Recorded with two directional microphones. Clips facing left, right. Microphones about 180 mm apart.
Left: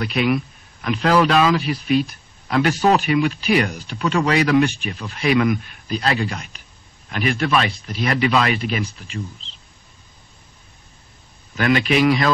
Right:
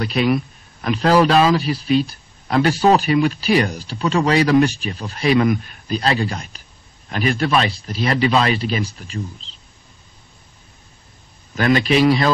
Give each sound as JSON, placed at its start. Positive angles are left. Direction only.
{"t": 0.0, "sound": "a man's voice", "side_deg": -35}
{"t": 11.5, "sound": "a man's voice", "side_deg": -35}